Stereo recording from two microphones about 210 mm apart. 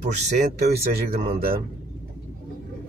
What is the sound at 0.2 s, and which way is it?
Speech, 35° right (ahead or behind).